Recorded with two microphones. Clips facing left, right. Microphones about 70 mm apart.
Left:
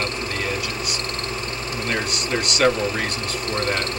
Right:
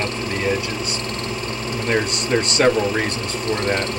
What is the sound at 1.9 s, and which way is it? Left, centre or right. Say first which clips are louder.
Speech: right 5 dB; right.